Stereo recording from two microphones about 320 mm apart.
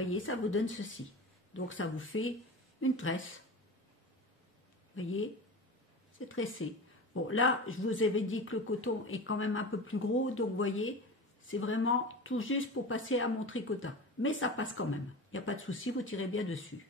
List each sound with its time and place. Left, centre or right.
0.0 s speech: left
6.1 s speech: left